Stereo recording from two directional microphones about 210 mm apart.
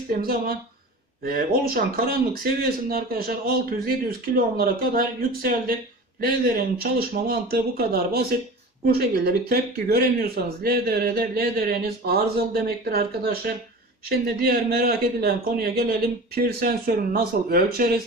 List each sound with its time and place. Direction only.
0.1 s speech: 45° right (ahead or behind)